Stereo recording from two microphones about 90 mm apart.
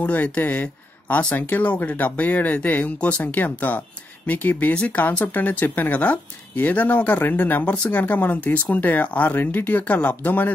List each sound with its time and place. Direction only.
0.0 s speech: 20° left (ahead or behind)